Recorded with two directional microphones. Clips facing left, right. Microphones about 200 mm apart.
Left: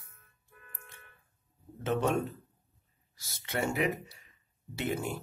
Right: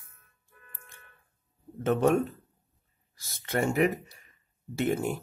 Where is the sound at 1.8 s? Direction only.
50° right (ahead or behind).